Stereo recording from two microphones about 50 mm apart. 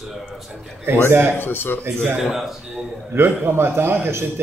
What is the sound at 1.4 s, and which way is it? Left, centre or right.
Speech, left.